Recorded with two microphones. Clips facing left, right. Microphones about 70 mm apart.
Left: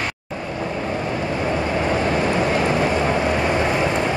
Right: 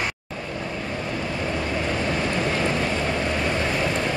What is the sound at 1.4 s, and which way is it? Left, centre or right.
Vehicle, left.